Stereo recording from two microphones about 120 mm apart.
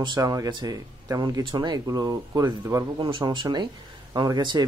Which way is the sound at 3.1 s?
40° right (ahead or behind).